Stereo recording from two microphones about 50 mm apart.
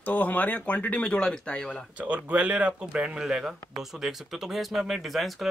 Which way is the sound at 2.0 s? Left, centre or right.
Right.